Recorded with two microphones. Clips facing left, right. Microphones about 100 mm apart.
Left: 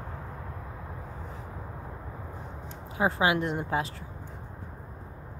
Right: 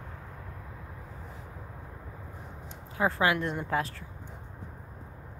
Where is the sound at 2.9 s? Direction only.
20° left (ahead or behind).